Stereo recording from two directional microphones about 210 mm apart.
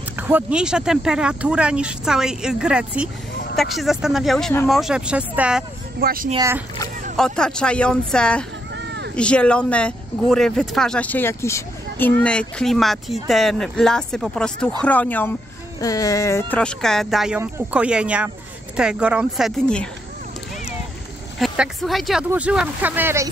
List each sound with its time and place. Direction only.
0.1 s speech: 10° right (ahead or behind)
5.9 s speech: 45° right (ahead or behind)
6.3 s speech: 15° right (ahead or behind)
7.2 s speech: 5° left (ahead or behind)
8.7 s a sound: 55° right (ahead or behind)
9.1 s speech: 5° left (ahead or behind)
21.4 s speech: centre (ahead or behind)